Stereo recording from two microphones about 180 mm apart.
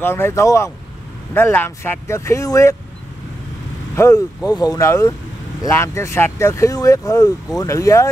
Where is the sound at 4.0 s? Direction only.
15° left (ahead or behind).